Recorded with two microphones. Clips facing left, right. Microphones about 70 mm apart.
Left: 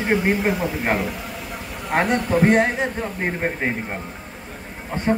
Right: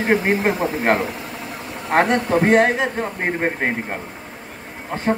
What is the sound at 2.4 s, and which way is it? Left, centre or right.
A man's voice, right.